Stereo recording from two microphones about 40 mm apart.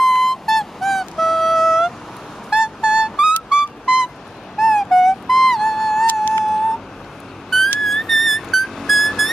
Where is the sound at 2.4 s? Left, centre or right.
Right.